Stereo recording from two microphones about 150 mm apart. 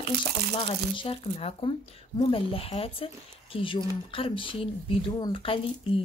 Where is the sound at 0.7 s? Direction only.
40° left (ahead or behind).